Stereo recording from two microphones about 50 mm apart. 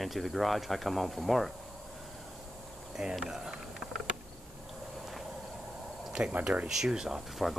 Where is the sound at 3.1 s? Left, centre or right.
Centre.